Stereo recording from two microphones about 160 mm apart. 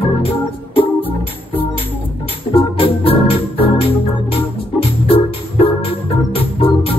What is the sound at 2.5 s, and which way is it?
Organ, 35° left (ahead or behind).